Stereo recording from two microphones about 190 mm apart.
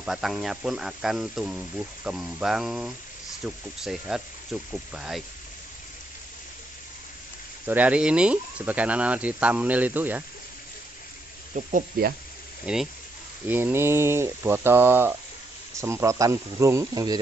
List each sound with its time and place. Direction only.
0.0 s speech: centre (ahead or behind)
7.6 s speech: 10° right (ahead or behind)
11.5 s speech: 45° right (ahead or behind)
12.7 s speech: 5° right (ahead or behind)